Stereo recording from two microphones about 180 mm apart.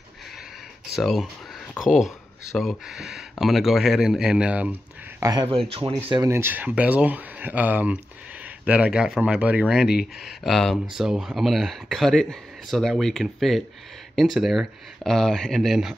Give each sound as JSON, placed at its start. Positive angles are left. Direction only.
{"t": 0.9, "sound": "speech", "side_deg": 0}
{"t": 5.2, "sound": "speech", "side_deg": -20}
{"t": 6.0, "sound": "speech", "side_deg": -20}